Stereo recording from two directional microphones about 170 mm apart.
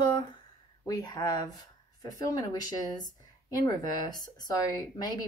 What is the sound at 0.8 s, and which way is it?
Speech, 25° left (ahead or behind).